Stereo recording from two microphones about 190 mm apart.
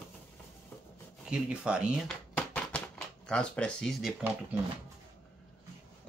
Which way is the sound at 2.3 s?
5° left (ahead or behind).